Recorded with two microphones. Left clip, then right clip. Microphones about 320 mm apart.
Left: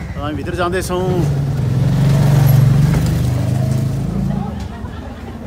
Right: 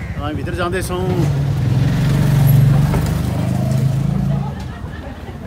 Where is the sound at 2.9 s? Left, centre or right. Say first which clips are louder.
Left 1 dB; centre.